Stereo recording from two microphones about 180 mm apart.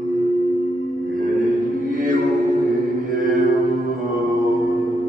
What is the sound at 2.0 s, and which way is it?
Music, 50° right (ahead or behind).